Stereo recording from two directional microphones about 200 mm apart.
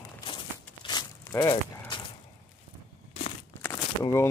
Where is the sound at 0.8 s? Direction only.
15° left (ahead or behind).